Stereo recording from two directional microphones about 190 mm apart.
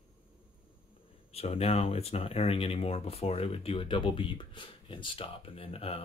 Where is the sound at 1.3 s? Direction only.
35° left (ahead or behind).